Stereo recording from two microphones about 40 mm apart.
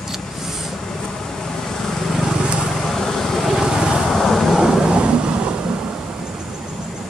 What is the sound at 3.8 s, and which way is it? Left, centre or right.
Vehicle, centre.